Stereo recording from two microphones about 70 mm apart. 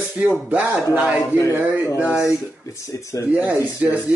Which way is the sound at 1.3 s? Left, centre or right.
Right.